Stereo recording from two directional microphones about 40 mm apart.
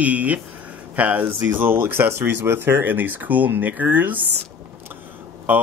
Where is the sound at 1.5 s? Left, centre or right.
Right.